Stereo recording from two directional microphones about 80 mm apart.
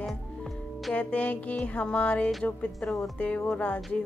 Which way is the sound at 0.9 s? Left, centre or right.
Centre.